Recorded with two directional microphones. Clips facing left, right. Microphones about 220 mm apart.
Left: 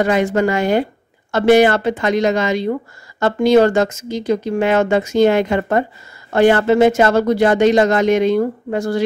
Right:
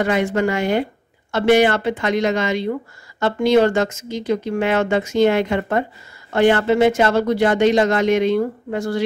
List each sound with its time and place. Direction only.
0.0 s speech: 40° left (ahead or behind)